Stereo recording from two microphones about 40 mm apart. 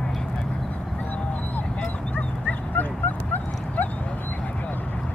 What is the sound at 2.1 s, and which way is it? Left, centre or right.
Dog, left.